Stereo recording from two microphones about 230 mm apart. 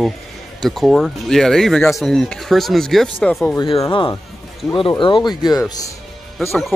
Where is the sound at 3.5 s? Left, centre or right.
Centre.